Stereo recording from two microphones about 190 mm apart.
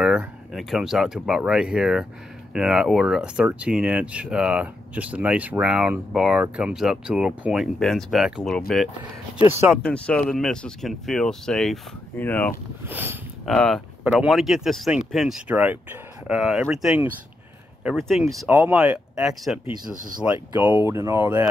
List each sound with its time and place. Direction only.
0.0 s speech: 5° right (ahead or behind)
9.5 s speech: 10° right (ahead or behind)
9.8 s speech: 5° left (ahead or behind)
12.8 s speech: 10° right (ahead or behind)
13.5 s speech: 5° left (ahead or behind)